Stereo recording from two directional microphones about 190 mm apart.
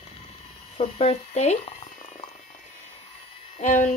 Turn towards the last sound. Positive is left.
turn(degrees=40)  # may be behind; listen again after turning